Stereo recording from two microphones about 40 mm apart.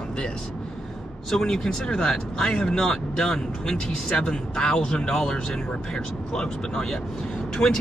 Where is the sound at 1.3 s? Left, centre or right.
Centre.